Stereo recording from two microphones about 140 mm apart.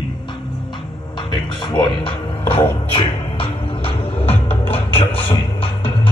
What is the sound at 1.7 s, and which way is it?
Music, 35° left (ahead or behind).